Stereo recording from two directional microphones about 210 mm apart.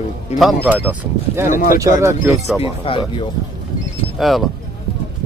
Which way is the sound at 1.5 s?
40° left (ahead or behind).